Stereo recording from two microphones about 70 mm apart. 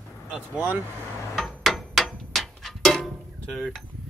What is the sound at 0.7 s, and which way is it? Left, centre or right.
Speech, right.